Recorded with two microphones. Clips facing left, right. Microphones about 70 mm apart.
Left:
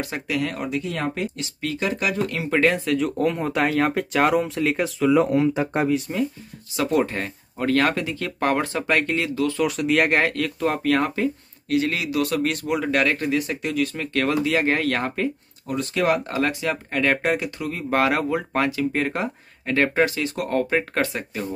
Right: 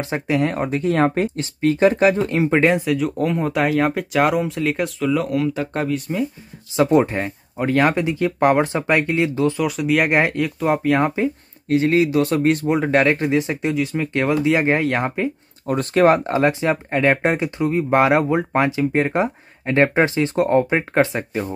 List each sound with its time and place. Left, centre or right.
0.0 s speech: right
2.8 s speech: centre
5.1 s speech: left
5.9 s speech: centre
6.8 s speech: right
9.6 s speech: centre
10.2 s speech: centre
11.7 s speech: right
15.6 s speech: right